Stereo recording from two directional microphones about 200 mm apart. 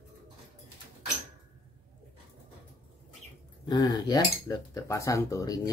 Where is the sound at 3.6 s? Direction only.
20° left (ahead or behind).